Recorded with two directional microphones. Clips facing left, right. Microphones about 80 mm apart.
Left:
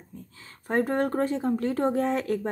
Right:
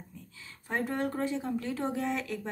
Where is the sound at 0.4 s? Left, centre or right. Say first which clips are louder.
Left 7 dB; left.